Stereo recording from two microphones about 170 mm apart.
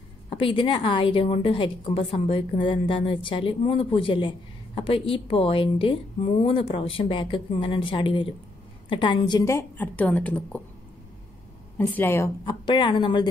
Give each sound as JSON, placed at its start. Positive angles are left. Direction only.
{"t": 0.4, "sound": "a woman's voice", "side_deg": 30}
{"t": 11.8, "sound": "a woman's voice", "side_deg": 10}
{"t": 12.4, "sound": "speech", "side_deg": 25}